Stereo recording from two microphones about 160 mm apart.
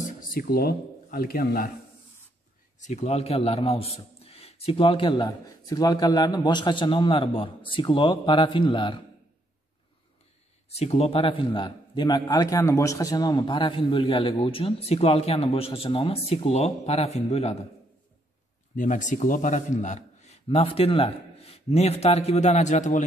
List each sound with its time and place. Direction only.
0.0 s speech: 60° left (ahead or behind)
2.8 s a man's voice: 45° left (ahead or behind)
10.7 s a man's voice: 40° left (ahead or behind)
18.8 s a man's voice: 50° left (ahead or behind)